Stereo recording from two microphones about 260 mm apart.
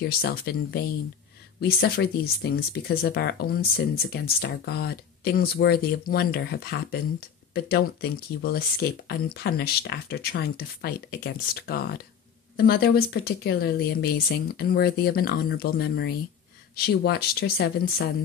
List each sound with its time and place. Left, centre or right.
0.0 s speech: left